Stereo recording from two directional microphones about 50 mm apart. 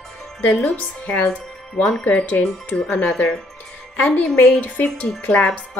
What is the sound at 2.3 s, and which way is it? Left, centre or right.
Speech, left.